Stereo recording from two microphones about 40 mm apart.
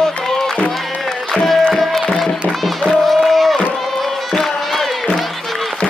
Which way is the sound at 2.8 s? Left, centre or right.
Centre.